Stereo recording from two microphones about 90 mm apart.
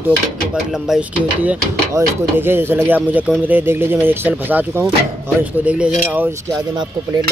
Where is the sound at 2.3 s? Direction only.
25° right (ahead or behind).